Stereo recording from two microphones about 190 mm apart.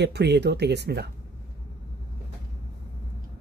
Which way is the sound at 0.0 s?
65° right (ahead or behind).